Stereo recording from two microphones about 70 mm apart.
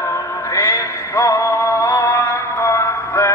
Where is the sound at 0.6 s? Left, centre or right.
Left.